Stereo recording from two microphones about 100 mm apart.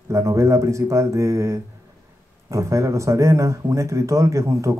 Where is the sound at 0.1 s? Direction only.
30° right (ahead or behind).